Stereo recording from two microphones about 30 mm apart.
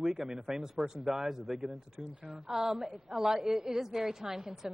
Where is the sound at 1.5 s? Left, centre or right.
Centre.